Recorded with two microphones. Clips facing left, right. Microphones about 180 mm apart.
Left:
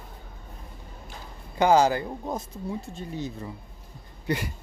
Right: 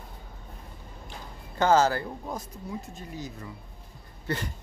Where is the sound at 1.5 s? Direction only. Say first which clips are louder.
Left 2 dB; 15° left (ahead or behind).